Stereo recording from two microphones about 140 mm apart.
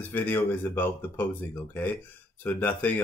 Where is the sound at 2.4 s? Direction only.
10° left (ahead or behind).